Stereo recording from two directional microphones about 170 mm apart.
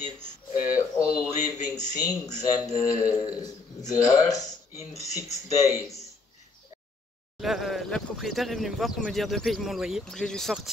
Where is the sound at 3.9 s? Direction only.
20° left (ahead or behind).